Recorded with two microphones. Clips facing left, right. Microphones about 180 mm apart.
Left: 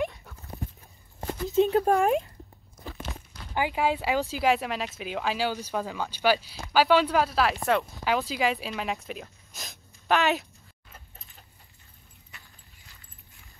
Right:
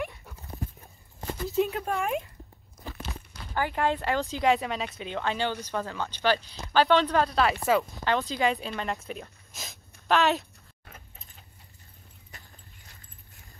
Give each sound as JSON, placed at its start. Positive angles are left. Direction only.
{"t": 1.7, "sound": "speech", "side_deg": 35}
{"t": 3.5, "sound": "speech", "side_deg": 10}
{"t": 12.3, "sound": "a sound", "side_deg": -40}